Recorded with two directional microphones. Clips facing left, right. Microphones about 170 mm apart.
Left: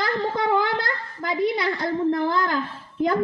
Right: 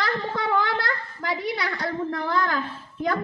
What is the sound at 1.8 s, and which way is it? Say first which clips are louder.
Speech: left 6 dB; 15° left (ahead or behind).